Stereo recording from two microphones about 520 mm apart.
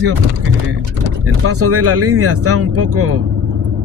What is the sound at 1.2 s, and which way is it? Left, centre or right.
Speech, right.